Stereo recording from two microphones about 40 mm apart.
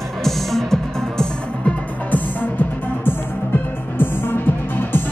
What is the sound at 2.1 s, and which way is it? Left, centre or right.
Music, left.